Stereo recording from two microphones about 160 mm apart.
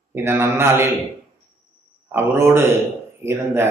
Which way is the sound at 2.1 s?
15° right (ahead or behind).